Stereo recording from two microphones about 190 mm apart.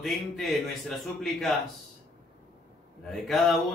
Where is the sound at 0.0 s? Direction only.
Centre (ahead or behind).